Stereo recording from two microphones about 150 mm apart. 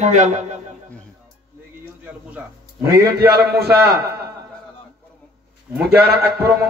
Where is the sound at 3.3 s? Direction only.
90° right.